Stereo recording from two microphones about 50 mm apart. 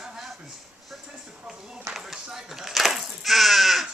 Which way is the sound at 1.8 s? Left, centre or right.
Centre.